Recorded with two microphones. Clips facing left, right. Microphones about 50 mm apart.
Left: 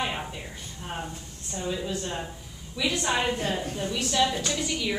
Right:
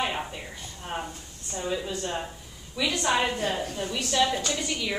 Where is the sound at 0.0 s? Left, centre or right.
Centre.